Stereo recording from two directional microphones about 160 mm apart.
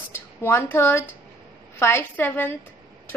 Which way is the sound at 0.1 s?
15° left (ahead or behind).